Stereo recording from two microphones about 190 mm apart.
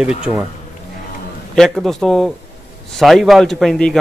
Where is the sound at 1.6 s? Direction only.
Centre (ahead or behind).